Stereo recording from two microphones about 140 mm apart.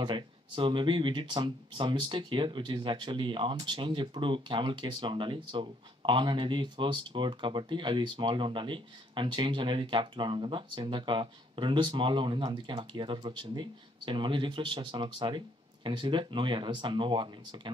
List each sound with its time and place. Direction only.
0.0 s speech: 35° right (ahead or behind)